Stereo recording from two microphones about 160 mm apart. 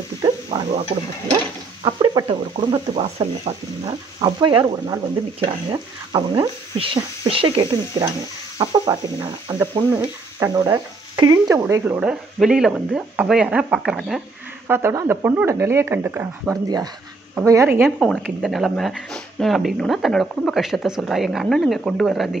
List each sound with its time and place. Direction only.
0.2 s a sound: 30° right (ahead or behind)
1.8 s speech: 30° right (ahead or behind); by 14.2 s 5° right (ahead or behind)
14.7 s speech: 15° right (ahead or behind)
17.8 s speech: centre (ahead or behind)